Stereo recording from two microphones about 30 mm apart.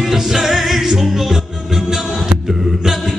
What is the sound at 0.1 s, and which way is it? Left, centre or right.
Music, centre.